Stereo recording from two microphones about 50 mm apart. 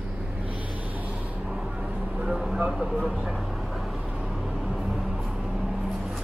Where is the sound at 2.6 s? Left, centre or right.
Centre.